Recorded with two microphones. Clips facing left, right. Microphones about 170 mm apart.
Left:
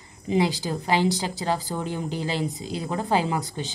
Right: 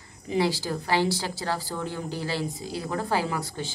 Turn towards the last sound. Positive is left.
turn(degrees=20)  # may be behind; listen again after turning